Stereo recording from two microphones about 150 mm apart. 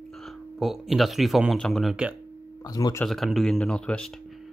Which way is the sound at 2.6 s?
25° left (ahead or behind).